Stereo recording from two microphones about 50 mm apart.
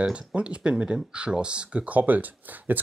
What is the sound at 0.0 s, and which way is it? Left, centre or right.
Speech, right.